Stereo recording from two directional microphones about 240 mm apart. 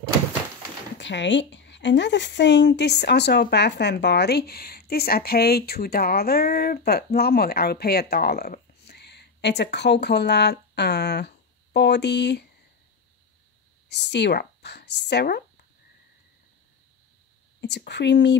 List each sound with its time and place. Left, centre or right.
0.9 s speech: left
13.8 s speech: left
17.6 s speech: left